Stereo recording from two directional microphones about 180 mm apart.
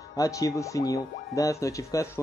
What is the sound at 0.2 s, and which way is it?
Speech, 20° left (ahead or behind).